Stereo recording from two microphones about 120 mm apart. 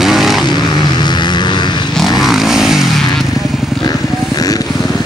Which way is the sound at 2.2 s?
Centre (ahead or behind).